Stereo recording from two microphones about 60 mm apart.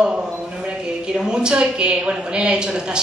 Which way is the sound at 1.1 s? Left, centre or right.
Centre.